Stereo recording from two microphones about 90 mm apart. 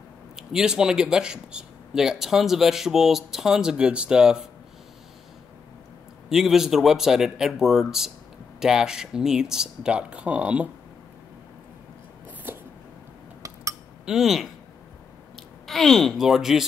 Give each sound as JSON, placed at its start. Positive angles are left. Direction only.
{"t": 0.4, "sound": "speech", "side_deg": -5}
{"t": 6.2, "sound": "speech", "side_deg": -5}
{"t": 12.5, "sound": "a sound", "side_deg": -25}
{"t": 14.0, "sound": "speech", "side_deg": -5}
{"t": 15.6, "sound": "speech", "side_deg": 5}